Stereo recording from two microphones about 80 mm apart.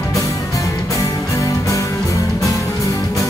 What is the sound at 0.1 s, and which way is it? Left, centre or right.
Music, left.